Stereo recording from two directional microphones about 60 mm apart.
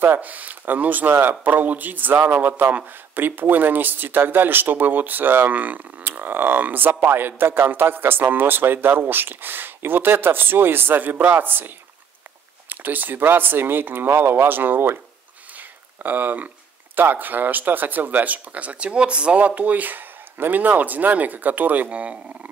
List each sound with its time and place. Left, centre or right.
0.2 s a man's voice: right
16.0 s a man's voice: right